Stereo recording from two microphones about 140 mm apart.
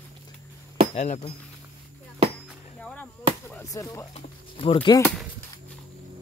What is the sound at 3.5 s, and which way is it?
Chop, 25° left (ahead or behind).